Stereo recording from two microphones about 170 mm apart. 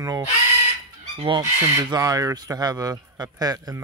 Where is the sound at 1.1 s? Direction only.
30° right (ahead or behind).